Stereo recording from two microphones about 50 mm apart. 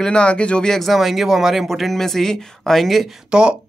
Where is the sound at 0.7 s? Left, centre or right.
Centre.